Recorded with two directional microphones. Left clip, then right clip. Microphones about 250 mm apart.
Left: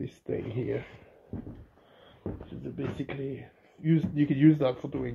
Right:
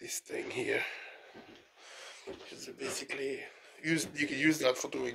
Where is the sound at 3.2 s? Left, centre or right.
Centre.